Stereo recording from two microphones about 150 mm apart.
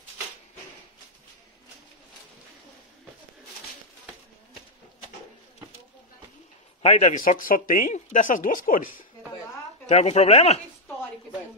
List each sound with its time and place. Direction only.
6.8 s speech: 45° left (ahead or behind); by 9.0 s 70° left (ahead or behind)
9.8 s speech: 45° left (ahead or behind)